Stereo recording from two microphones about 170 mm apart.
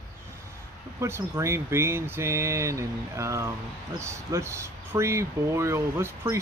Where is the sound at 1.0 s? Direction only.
15° right (ahead or behind).